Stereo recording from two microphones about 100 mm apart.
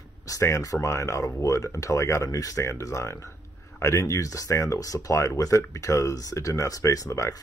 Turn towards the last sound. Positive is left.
turn(degrees=35)  # may be behind; listen again after turning